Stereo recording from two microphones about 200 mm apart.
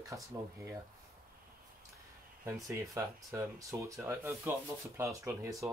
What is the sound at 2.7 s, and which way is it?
Speech, 15° right (ahead or behind).